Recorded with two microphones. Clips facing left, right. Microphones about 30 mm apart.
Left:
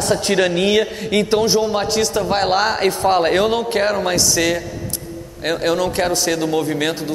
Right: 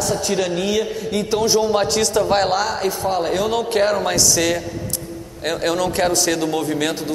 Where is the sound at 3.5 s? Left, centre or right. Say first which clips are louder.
Even; centre.